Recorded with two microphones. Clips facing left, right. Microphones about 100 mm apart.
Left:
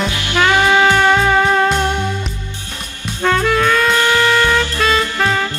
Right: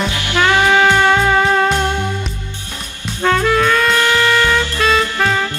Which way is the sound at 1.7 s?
20° left (ahead or behind).